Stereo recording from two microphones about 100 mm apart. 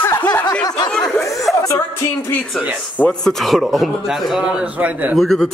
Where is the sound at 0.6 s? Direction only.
40° left (ahead or behind).